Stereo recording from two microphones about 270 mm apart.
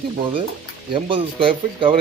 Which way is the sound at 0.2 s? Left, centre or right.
Centre.